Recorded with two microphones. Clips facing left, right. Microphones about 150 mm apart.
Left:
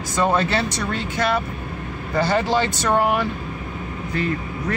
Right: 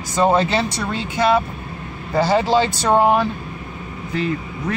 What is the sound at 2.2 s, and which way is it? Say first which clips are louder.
Speech: right 4 dB; 5° right (ahead or behind).